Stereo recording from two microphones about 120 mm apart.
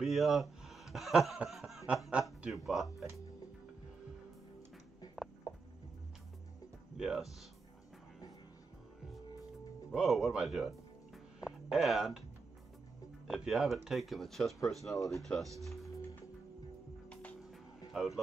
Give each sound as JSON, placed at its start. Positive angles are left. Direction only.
{"t": 0.0, "sound": "speech", "side_deg": 0}
{"t": 5.5, "sound": "music", "side_deg": 30}
{"t": 7.0, "sound": "speech", "side_deg": -5}
{"t": 9.8, "sound": "speech", "side_deg": 0}
{"t": 13.3, "sound": "speech", "side_deg": 0}
{"t": 17.1, "sound": "music", "side_deg": 10}
{"t": 17.4, "sound": "music", "side_deg": 0}